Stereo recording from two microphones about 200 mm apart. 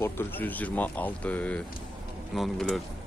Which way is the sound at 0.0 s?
10° left (ahead or behind).